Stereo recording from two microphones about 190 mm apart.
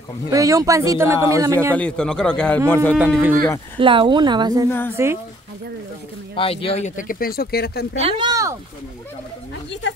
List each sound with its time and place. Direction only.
0.3 s a man's voice: 15° right (ahead or behind)
1.8 s a man's voice: 5° left (ahead or behind)
3.7 s a woman's voice: 25° right (ahead or behind)
4.6 s a woman's voice: 10° left (ahead or behind)
4.9 s a man's voice: 15° right (ahead or behind)
6.3 s speech: 30° left (ahead or behind); by 7.8 s 55° left (ahead or behind)
8.0 s a woman's voice: 25° right (ahead or behind)